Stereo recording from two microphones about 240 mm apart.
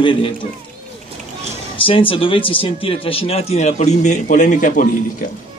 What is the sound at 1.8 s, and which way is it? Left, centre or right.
Speech, left.